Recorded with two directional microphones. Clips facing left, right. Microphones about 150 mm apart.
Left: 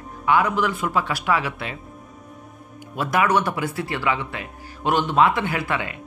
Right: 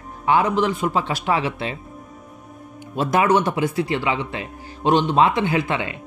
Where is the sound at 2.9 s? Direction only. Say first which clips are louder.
Right 3 dB; 25° right (ahead or behind).